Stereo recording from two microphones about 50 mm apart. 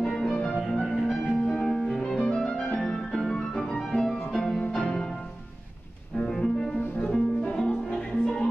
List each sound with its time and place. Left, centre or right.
0.0 s music: centre
1.6 s music: centre
6.1 s music: centre
7.9 s music: centre